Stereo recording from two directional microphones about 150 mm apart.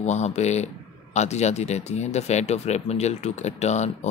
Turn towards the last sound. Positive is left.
turn(degrees=50)  # may be behind; listen again after turning